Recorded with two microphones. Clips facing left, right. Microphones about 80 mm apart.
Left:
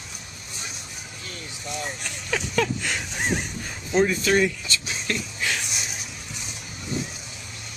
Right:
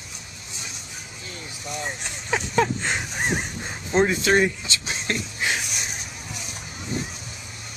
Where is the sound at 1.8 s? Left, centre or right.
Right.